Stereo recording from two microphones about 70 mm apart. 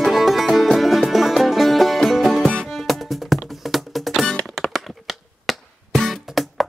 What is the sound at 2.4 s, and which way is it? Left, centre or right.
Music, centre.